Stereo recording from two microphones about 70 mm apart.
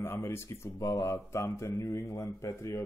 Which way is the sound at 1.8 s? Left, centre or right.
Left.